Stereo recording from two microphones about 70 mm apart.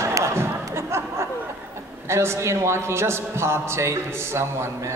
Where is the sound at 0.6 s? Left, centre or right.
Right.